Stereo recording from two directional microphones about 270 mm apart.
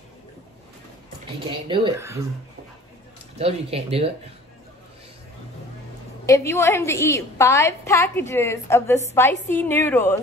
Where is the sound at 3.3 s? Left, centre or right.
Right.